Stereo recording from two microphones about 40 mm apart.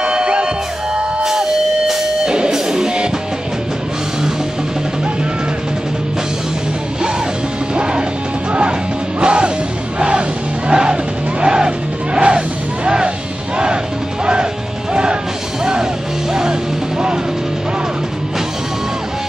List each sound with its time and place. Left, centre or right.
0.0 s music: right
7.7 s music: right
9.2 s music: right
14.2 s music: right